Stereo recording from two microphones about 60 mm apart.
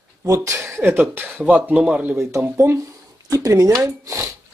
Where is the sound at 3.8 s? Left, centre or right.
Right.